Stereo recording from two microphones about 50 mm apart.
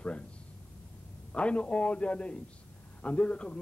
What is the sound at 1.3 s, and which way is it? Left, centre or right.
A man's voice, left.